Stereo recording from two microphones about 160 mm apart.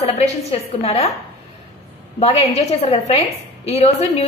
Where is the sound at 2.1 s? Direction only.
40° left (ahead or behind).